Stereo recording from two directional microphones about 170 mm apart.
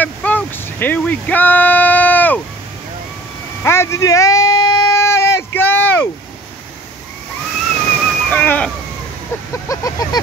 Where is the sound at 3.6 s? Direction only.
15° left (ahead or behind).